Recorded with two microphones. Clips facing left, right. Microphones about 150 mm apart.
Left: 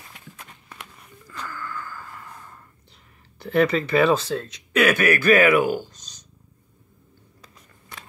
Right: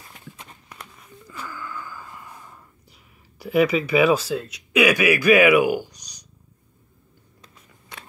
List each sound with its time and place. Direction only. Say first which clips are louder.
1.3 s gasp: left 1 dB; 10° right (ahead or behind)